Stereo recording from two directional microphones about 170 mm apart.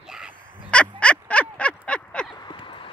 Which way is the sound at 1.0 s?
5° left (ahead or behind).